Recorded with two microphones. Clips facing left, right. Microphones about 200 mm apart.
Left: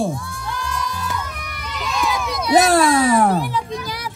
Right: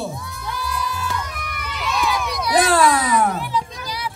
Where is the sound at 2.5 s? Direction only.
25° left (ahead or behind).